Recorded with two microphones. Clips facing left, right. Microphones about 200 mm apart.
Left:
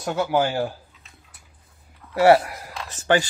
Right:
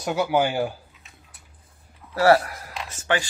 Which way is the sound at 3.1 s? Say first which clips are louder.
Left 5 dB; 35° left (ahead or behind).